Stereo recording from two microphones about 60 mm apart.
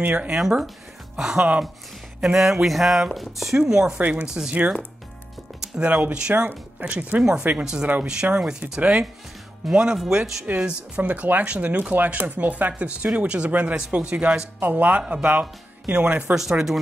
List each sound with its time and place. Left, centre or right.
0.0 s speech: centre
0.4 s speech: centre
2.3 s a sound: centre
3.6 s speech: centre
4.0 s speech: right
5.8 s speech: right
10.4 s speech: right
16.3 s speech: centre